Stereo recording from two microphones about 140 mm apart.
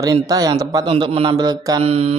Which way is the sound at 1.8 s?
45° right (ahead or behind).